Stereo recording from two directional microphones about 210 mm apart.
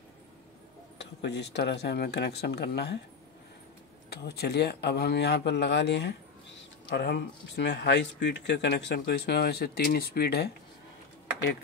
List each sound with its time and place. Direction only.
0.9 s speech: 55° left (ahead or behind)
4.1 s speech: 50° left (ahead or behind)